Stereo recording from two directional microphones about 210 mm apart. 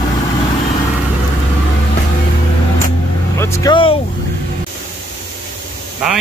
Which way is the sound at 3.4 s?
15° left (ahead or behind).